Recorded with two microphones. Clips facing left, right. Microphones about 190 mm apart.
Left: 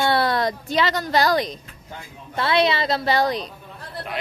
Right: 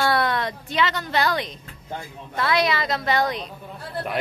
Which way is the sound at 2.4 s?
25° left (ahead or behind).